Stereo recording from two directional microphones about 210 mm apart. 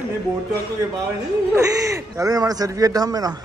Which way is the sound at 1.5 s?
15° right (ahead or behind).